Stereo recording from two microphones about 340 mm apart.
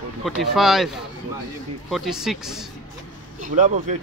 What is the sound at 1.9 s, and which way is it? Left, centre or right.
Speech, centre.